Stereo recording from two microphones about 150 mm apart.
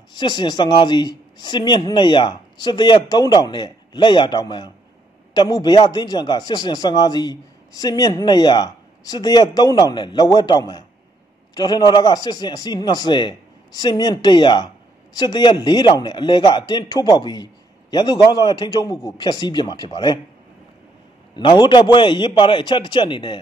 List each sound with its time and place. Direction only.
0.1 s a man's voice: 30° left (ahead or behind)
21.4 s speech: 30° left (ahead or behind)